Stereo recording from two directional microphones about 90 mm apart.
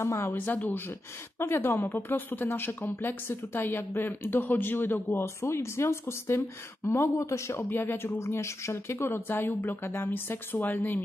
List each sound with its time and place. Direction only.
0.0 s speech: 30° left (ahead or behind)